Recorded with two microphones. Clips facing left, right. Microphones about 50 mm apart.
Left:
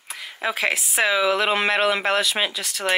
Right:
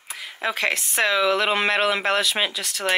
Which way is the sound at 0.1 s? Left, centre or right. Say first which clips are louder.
Even; centre.